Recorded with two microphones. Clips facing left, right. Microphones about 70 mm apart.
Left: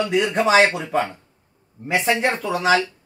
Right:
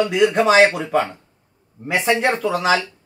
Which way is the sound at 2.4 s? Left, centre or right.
Centre.